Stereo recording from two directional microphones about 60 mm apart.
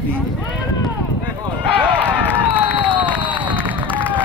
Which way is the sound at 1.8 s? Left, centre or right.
Right.